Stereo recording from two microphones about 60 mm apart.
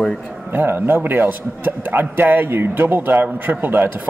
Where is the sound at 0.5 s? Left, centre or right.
Right.